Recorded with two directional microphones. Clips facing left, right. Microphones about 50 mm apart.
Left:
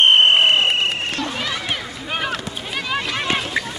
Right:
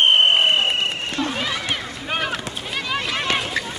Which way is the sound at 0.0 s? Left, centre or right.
Left.